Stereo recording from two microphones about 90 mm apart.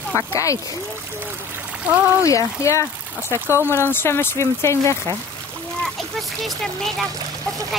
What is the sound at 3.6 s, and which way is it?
Speech, 25° right (ahead or behind).